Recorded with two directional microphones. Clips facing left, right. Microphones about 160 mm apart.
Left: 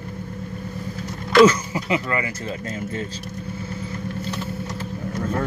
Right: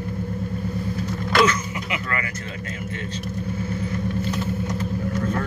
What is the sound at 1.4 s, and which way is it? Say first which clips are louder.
Speech: left 8 dB; 35° left (ahead or behind).